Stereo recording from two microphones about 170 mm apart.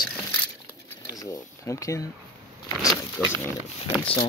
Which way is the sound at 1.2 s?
20° left (ahead or behind).